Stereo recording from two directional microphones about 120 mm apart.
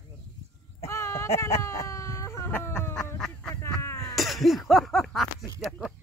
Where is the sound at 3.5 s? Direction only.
25° left (ahead or behind).